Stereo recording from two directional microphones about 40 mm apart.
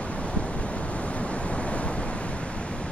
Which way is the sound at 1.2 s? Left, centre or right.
Left.